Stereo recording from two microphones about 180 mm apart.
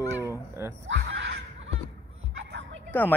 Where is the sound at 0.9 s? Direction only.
80° right.